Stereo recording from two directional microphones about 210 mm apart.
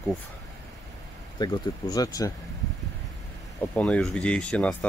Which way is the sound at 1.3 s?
20° left (ahead or behind).